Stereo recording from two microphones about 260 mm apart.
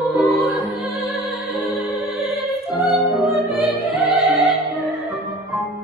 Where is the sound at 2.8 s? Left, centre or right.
Centre.